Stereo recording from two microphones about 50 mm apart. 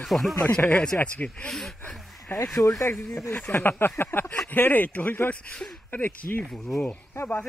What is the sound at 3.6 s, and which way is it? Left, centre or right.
A man's voice, left.